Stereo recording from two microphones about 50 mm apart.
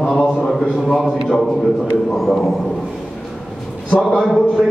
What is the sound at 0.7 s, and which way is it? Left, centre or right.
A man's voice, centre.